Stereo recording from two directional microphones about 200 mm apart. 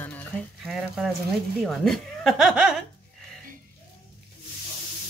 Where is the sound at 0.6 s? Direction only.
Centre (ahead or behind).